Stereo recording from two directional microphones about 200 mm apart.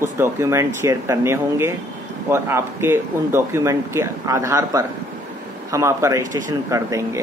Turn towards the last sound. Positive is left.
turn(degrees=-15)  # may be behind; listen again after turning